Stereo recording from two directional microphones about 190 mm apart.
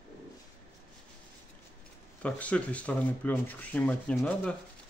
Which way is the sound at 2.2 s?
5° left (ahead or behind).